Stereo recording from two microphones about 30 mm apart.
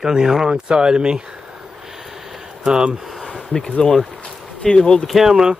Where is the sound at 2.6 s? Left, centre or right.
Right.